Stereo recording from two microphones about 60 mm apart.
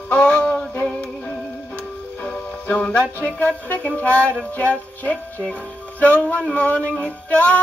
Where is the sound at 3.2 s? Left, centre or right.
Left.